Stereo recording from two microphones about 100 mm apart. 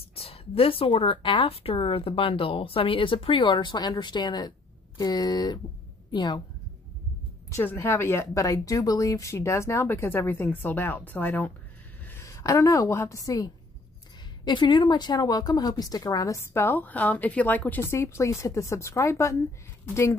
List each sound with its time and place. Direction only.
0.1 s a woman's voice: 80° left; by 6.4 s 45° left (ahead or behind)
7.5 s speech: 25° left (ahead or behind)
12.1 s a woman's voice: 30° left (ahead or behind)
14.4 s speech: 50° left (ahead or behind); by 20.2 s 30° left (ahead or behind)